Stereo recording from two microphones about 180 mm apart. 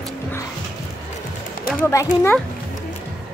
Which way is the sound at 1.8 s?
20° left (ahead or behind).